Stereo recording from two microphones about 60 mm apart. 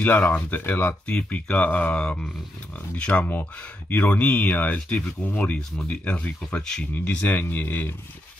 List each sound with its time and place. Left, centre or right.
0.0 s speech: left
6.4 s speech: centre; by 7.9 s left